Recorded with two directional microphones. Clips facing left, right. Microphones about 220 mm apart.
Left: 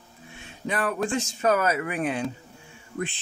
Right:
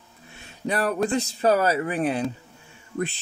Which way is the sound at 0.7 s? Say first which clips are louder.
Right 3 dB; 40° right (ahead or behind).